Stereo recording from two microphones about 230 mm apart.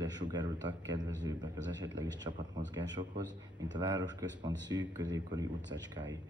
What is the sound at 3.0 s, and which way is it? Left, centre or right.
Speech, right.